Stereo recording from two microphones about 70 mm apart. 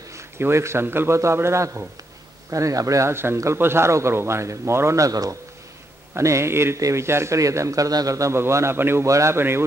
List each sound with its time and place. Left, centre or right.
0.4 s speech: right
3.5 s speech: right
6.1 s speech: right
9.0 s speech: right